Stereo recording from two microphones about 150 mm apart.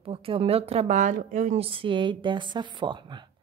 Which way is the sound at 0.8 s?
60° right (ahead or behind).